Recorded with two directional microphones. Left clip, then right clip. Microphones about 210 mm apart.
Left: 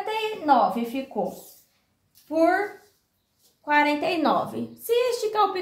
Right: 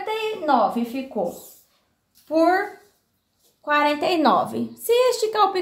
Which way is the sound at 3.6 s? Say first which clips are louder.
Right 2 dB; 30° right (ahead or behind).